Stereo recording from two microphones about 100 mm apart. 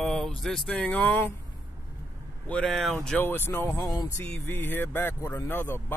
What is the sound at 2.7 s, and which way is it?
Speech, centre (ahead or behind).